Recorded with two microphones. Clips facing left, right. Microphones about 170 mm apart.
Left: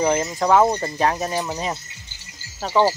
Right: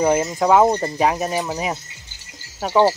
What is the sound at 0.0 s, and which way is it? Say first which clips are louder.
Speech: right 3 dB; 10° right (ahead or behind).